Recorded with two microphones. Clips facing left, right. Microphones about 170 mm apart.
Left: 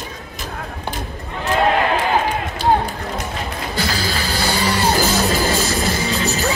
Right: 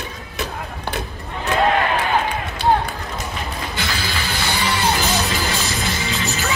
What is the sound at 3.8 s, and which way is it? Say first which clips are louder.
Music: left 5 dB; 35° left (ahead or behind).